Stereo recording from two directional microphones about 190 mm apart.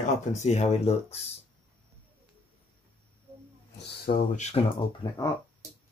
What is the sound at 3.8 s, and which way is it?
Speech, 50° left (ahead or behind).